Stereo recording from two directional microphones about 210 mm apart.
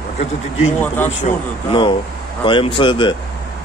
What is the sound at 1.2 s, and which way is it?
Speech, 25° left (ahead or behind).